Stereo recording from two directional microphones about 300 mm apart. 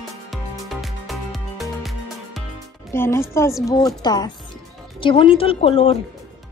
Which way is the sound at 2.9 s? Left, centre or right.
Centre.